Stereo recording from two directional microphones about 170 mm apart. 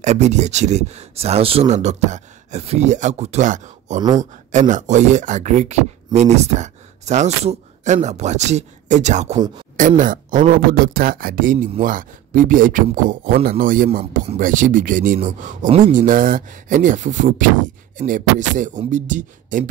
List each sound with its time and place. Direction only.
0.0 s speech: 40° right (ahead or behind)